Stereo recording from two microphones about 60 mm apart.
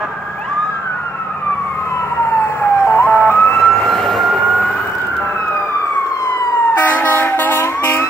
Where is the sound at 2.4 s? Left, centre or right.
Left.